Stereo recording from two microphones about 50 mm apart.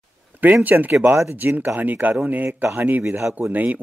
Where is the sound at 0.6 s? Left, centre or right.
Right.